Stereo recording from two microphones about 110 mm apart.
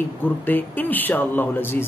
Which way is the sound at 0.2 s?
15° left (ahead or behind).